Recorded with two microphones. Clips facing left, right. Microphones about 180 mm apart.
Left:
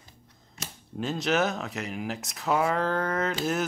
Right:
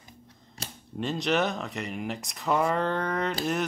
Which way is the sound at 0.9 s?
Centre (ahead or behind).